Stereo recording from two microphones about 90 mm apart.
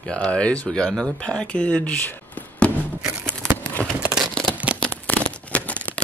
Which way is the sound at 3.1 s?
30° right (ahead or behind).